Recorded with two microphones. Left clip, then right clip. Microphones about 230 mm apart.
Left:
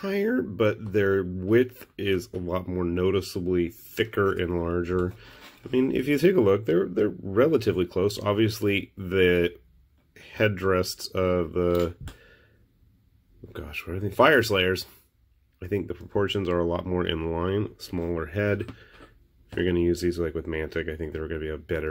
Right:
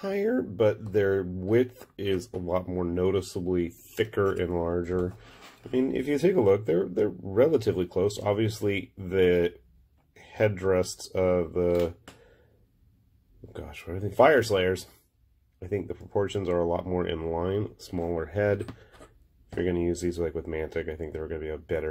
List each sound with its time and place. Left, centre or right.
0.0 s speech: centre
13.5 s speech: centre